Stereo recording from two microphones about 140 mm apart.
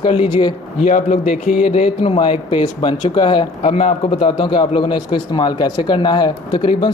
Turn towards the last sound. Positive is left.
turn(degrees=35)  # may be behind; listen again after turning